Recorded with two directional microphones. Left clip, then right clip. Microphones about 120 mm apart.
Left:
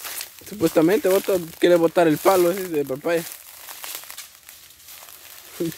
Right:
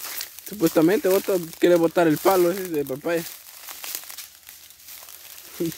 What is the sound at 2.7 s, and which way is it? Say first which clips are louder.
Crumpling: left 2 dB; 5° right (ahead or behind).